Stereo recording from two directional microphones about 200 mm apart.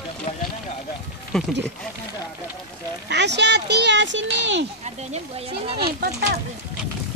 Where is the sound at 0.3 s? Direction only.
35° left (ahead or behind).